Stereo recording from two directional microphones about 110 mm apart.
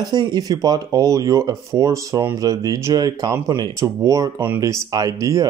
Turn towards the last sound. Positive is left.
turn(degrees=-30)  # may be behind; listen again after turning